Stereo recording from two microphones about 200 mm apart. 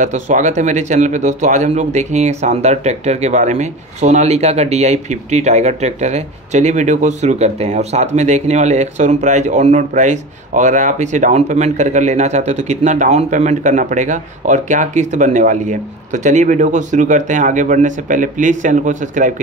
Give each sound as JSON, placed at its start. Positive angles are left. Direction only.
{"t": 0.0, "sound": "speech", "side_deg": -35}